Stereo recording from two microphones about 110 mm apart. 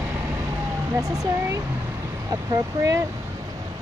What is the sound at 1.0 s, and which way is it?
Speech, 30° right (ahead or behind).